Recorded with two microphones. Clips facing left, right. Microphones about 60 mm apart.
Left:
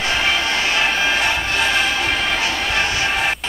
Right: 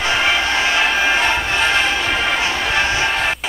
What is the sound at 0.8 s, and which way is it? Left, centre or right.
Music, centre.